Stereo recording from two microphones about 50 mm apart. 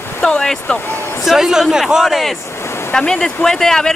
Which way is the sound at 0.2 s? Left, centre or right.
Centre.